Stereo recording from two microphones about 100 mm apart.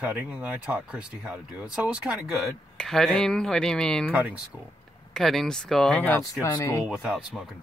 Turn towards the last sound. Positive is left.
turn(degrees=-5)  # may be behind; listen again after turning